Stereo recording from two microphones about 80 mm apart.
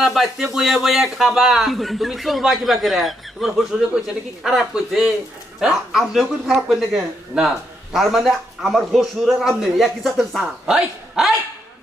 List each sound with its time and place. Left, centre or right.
0.0 s a man's voice: centre